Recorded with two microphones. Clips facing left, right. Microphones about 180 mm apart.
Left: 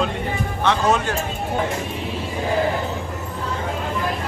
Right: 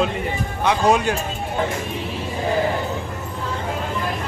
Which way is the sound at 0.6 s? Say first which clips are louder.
Right 2 dB; 15° right (ahead or behind).